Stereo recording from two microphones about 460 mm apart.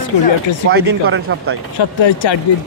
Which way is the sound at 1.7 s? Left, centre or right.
Left.